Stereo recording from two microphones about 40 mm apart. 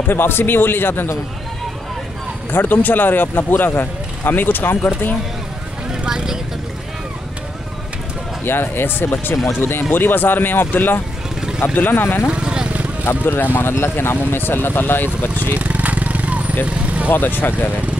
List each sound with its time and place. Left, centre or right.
0.1 s speech: left
2.5 s speech: left
5.9 s speech: centre
8.5 s speech: left
12.3 s vehicle: right
13.2 s speech: left
13.6 s speech: left
15.5 s vehicle: right
17.1 s speech: left